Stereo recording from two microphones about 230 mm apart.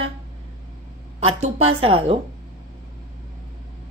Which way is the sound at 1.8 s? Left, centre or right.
Right.